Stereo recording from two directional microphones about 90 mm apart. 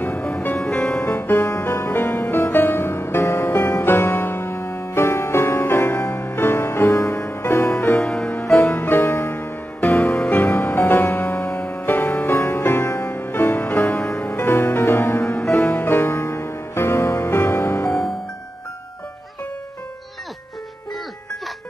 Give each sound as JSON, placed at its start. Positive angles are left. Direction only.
{"t": 0.6, "sound": "music", "side_deg": 5}
{"t": 1.1, "sound": "music", "side_deg": 25}
{"t": 8.0, "sound": "music", "side_deg": 5}
{"t": 8.6, "sound": "music", "side_deg": 25}
{"t": 13.7, "sound": "music", "side_deg": 5}
{"t": 14.3, "sound": "music", "side_deg": 30}